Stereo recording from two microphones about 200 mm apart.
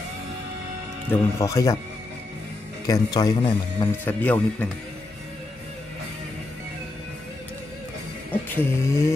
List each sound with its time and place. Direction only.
1.4 s vehicle: 15° left (ahead or behind)
2.9 s speech: 20° left (ahead or behind)
4.0 s vehicle: 10° left (ahead or behind)
8.3 s vehicle: 10° left (ahead or behind)